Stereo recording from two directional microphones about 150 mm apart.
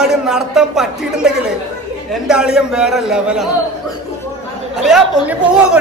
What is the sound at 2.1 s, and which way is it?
A man's voice, 5° right (ahead or behind).